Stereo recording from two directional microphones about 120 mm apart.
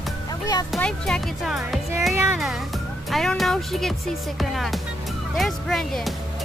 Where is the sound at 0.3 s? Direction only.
35° left (ahead or behind).